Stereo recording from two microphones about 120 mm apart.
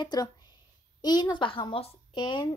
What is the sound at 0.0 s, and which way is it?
A woman's voice, 35° left (ahead or behind).